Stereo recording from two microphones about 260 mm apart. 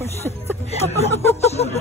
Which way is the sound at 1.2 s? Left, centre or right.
Left.